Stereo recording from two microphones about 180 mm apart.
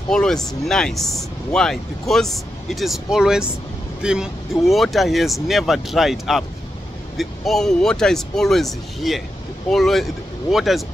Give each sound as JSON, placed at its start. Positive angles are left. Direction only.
{"t": 0.1, "sound": "speech", "side_deg": 5}